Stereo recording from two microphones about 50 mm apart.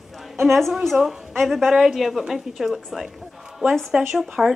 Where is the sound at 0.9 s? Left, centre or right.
Centre.